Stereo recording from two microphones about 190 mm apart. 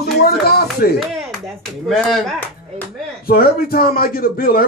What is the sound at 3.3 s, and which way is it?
Speech, 50° left (ahead or behind).